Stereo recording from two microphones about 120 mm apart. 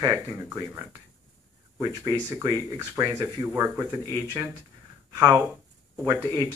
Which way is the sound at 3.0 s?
30° right (ahead or behind).